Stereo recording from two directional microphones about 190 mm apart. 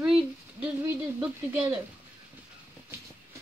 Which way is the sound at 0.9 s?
10° right (ahead or behind).